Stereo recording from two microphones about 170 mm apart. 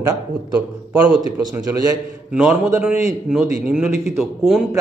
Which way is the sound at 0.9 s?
10° right (ahead or behind).